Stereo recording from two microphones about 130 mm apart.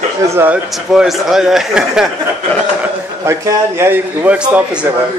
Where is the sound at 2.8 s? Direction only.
20° right (ahead or behind).